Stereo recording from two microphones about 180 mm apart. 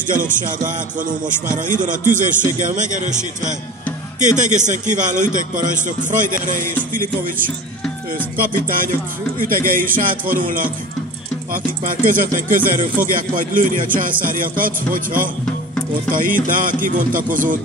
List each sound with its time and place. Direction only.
0.0 s a man's voice: 45° right (ahead or behind)